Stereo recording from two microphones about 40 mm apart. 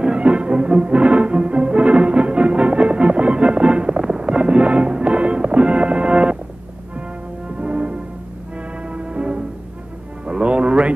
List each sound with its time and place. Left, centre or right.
0.0 s music: right
7.6 s music: right